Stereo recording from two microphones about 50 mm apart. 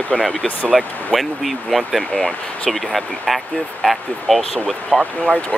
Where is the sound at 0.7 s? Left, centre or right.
Centre.